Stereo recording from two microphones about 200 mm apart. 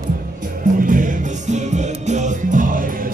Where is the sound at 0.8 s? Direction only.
40° right (ahead or behind).